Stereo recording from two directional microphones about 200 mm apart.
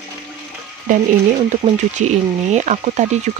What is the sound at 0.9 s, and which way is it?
Speech, 40° right (ahead or behind).